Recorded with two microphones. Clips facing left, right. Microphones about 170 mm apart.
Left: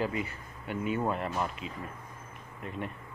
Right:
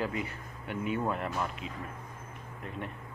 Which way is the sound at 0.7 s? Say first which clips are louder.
Left 1 dB; 5° left (ahead or behind).